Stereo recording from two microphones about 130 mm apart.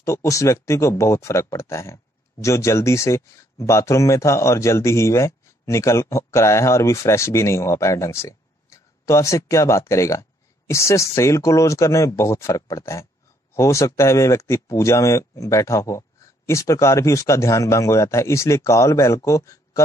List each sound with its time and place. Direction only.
0.0 s speech: 25° left (ahead or behind)